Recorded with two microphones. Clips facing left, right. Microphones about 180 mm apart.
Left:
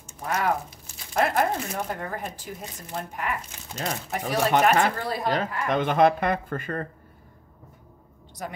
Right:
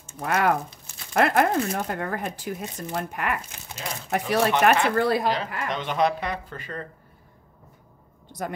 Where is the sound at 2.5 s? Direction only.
75° right (ahead or behind).